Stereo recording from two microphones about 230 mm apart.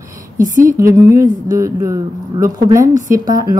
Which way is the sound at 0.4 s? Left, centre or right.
Right.